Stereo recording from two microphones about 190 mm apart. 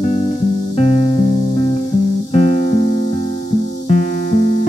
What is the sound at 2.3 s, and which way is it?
Music, 35° left (ahead or behind).